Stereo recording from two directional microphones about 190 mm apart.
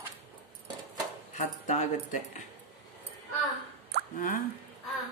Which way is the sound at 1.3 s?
40° left (ahead or behind).